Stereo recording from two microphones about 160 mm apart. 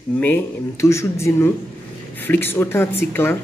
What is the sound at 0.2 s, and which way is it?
Speech, 15° left (ahead or behind).